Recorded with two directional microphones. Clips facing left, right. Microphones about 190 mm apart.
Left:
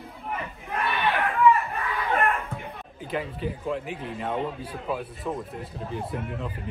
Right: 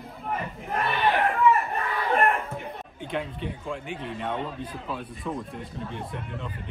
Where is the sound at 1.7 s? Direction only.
30° right (ahead or behind).